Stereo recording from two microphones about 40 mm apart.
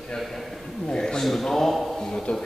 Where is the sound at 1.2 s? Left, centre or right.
Centre.